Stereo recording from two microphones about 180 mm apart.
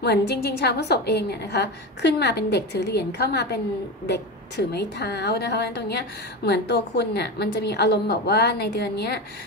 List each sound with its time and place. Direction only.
0.0 s a woman's voice: 65° left (ahead or behind)